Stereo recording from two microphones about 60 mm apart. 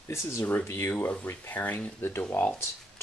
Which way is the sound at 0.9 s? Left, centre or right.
Left.